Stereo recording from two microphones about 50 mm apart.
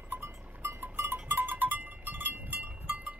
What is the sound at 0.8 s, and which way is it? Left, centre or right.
Cowbell, right.